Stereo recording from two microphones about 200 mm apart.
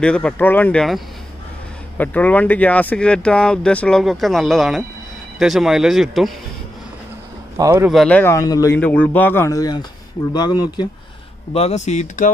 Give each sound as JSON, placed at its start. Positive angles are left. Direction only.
{"t": 0.0, "sound": "speech", "side_deg": 5}
{"t": 7.5, "sound": "speech", "side_deg": -15}
{"t": 7.9, "sound": "a man's voice", "side_deg": 5}
{"t": 11.5, "sound": "speech", "side_deg": 30}